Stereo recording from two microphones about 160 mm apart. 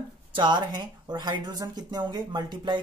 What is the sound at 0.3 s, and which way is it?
Speech, 30° right (ahead or behind).